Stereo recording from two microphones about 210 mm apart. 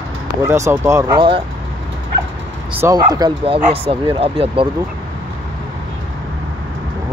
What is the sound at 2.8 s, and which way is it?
Speech, 20° right (ahead or behind).